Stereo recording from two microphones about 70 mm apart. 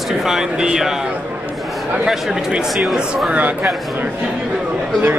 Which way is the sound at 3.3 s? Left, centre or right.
Right.